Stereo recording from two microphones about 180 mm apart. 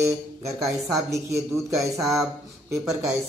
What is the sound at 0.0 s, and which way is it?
Speech, 15° right (ahead or behind).